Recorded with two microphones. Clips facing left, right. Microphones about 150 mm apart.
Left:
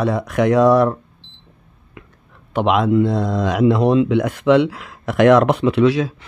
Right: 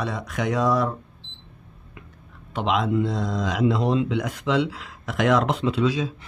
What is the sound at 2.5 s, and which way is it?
Speech, 60° left (ahead or behind).